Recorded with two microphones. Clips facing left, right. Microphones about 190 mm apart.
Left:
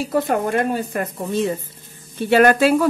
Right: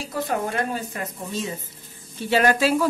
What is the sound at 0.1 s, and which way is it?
Speech, 60° left (ahead or behind).